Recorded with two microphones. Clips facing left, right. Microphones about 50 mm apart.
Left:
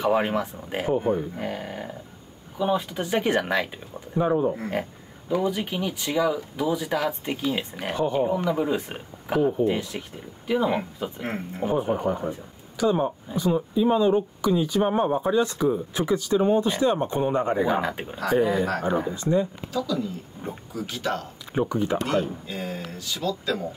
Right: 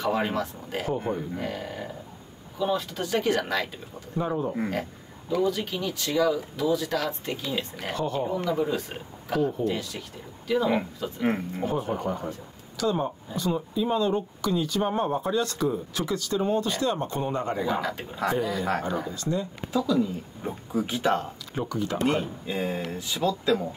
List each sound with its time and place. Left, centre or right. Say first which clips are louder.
0.0 s speech: left 4 dB; left
19.7 s speech: right 6 dB; centre
21.5 s speech: left 5 dB; left
22.5 s speech: right 3 dB; right